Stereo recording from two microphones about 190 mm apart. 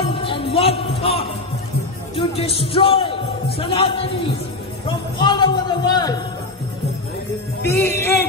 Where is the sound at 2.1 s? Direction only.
30° left (ahead or behind).